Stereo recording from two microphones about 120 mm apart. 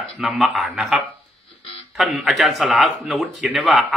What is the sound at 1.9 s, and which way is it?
A man's voice, 5° right (ahead or behind).